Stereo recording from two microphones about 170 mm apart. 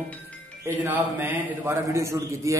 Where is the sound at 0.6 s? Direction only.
15° right (ahead or behind).